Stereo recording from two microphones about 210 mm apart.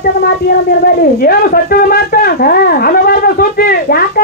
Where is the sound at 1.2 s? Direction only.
45° left (ahead or behind).